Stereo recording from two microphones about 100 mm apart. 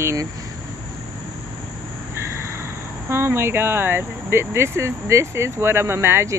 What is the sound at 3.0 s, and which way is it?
Speech, 25° right (ahead or behind).